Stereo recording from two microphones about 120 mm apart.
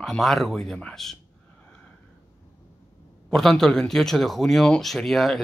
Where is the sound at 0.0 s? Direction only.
Centre (ahead or behind).